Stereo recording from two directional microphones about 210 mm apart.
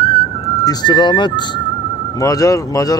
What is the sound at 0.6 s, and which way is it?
Speech, 20° left (ahead or behind).